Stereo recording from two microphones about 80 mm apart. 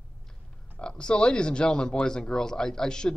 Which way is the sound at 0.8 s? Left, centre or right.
Centre.